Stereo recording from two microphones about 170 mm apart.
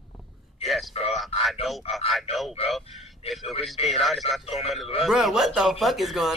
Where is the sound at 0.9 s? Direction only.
35° left (ahead or behind).